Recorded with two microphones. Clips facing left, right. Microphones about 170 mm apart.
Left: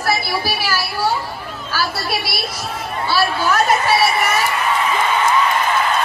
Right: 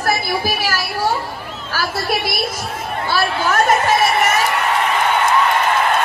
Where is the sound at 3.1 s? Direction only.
50° right (ahead or behind).